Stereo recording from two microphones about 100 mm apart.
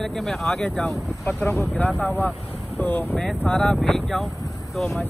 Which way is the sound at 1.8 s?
15° left (ahead or behind).